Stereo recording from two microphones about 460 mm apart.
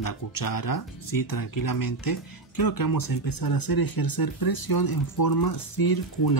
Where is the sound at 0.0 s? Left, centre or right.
Left.